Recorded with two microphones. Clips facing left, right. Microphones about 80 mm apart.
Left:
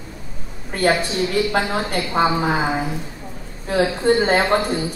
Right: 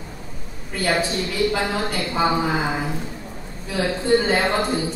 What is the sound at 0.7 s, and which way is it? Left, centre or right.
Speech, left.